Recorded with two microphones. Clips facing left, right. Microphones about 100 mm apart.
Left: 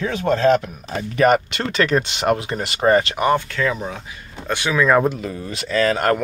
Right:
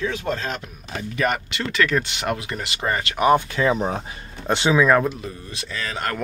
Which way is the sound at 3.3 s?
20° right (ahead or behind).